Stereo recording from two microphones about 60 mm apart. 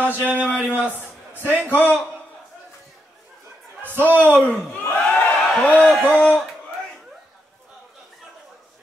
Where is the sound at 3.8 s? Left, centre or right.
Right.